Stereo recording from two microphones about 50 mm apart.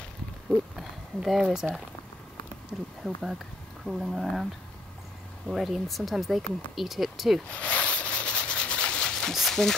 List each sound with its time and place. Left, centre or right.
0.5 s a sound: centre
3.0 s speech: centre
5.5 s speech: centre
7.4 s rub: left
9.3 s speech: centre